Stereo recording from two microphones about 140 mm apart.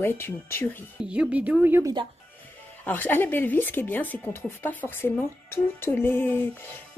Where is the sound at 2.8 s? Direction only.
15° left (ahead or behind).